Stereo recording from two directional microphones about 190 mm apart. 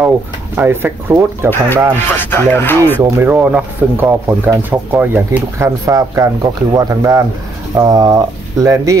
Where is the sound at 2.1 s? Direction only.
10° left (ahead or behind).